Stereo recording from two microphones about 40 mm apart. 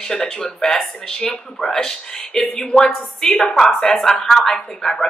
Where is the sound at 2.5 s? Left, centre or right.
Left.